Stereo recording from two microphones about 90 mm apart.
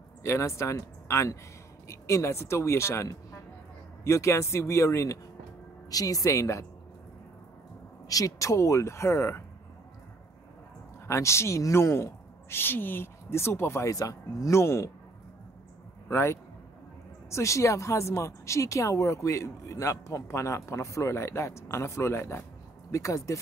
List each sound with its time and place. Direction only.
0.2 s speech: 30° left (ahead or behind)
8.1 s speech: 40° left (ahead or behind)
11.1 s speech: 30° left (ahead or behind)
13.8 s speech: 40° left (ahead or behind)
16.1 s speech: 30° left (ahead or behind)